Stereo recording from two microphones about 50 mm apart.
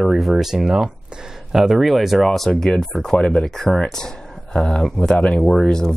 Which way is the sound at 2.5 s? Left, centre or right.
Centre.